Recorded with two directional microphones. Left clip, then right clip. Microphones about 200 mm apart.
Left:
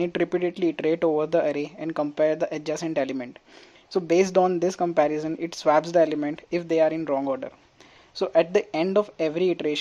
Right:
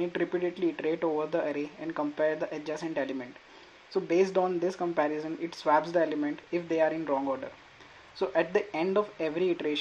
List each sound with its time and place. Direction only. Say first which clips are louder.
0.0 s speech: left 5 dB; 50° left (ahead or behind)